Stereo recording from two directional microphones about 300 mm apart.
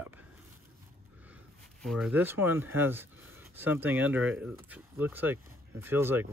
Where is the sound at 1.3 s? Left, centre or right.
Centre.